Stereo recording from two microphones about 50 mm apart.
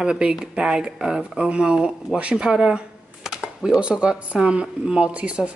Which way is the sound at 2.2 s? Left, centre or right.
Right.